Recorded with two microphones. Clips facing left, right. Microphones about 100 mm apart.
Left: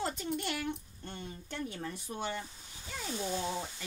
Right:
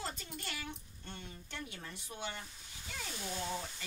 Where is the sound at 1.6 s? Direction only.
45° left (ahead or behind).